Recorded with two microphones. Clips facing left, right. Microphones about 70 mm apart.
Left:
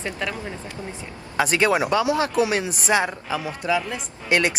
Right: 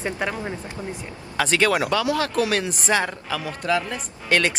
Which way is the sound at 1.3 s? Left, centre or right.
Centre.